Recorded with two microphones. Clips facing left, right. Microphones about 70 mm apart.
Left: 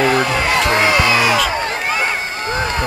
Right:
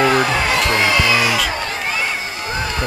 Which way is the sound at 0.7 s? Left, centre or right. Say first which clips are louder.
Left 2 dB; left.